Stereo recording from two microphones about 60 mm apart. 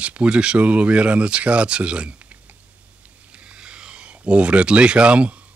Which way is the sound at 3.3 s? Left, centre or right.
Centre.